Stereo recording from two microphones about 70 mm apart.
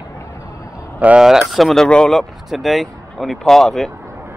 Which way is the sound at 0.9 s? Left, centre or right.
Centre.